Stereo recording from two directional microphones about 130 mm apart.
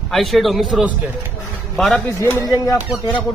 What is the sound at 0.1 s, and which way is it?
Speech, centre (ahead or behind).